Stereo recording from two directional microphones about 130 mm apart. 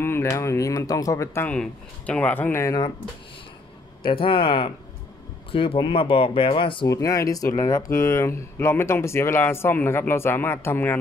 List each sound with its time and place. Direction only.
0.0 s speech: 20° left (ahead or behind)
4.0 s speech: 45° left (ahead or behind)
6.9 s speech: 25° left (ahead or behind)